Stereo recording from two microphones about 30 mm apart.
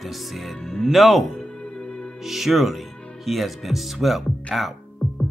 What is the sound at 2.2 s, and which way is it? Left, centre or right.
Speech, centre.